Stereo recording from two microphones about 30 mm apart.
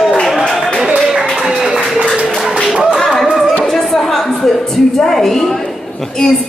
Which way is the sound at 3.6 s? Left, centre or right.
Centre.